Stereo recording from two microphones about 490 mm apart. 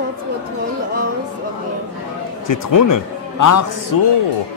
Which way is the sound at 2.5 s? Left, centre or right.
Left.